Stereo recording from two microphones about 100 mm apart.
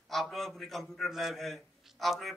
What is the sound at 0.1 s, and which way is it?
A man's voice, centre (ahead or behind).